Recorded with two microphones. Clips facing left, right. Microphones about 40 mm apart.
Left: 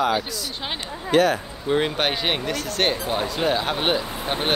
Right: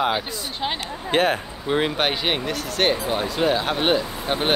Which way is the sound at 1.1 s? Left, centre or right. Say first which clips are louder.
Left 2 dB; right.